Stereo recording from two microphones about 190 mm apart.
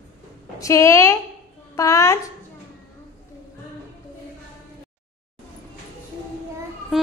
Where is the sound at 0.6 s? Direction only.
15° left (ahead or behind).